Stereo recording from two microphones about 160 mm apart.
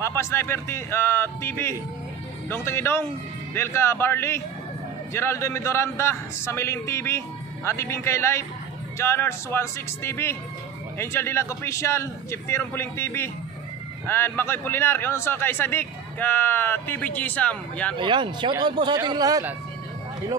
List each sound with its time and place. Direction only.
0.0 s a man's voice: 15° left (ahead or behind)
17.9 s speech: 30° right (ahead or behind)